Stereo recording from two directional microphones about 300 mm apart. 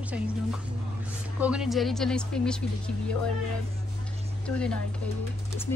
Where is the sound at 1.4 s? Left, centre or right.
Centre.